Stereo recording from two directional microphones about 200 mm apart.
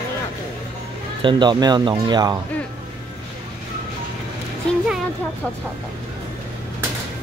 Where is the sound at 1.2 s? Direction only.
25° right (ahead or behind).